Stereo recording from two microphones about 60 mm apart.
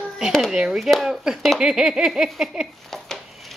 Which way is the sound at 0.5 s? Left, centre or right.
Centre.